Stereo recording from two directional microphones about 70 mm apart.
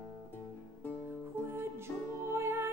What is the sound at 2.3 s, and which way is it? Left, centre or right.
Music, right.